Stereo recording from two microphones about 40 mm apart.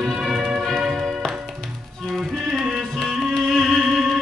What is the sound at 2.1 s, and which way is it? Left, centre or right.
Music, centre.